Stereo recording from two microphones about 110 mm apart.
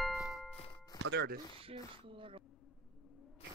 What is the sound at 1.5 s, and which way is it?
Speech, 55° right (ahead or behind).